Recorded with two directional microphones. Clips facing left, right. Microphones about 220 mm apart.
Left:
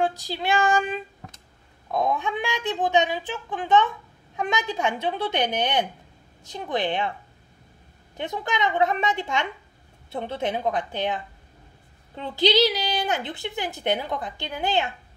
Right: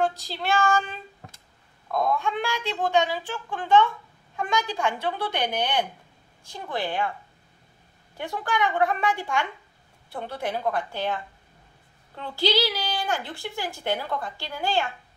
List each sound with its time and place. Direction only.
0.0 s a woman's voice: 15° left (ahead or behind)
8.2 s a woman's voice: 20° left (ahead or behind)
12.2 s a woman's voice: 20° left (ahead or behind)